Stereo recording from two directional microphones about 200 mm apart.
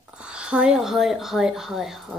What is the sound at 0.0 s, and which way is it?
Speech, 5° right (ahead or behind).